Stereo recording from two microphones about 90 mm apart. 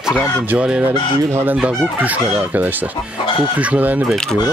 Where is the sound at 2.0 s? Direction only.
15° right (ahead or behind).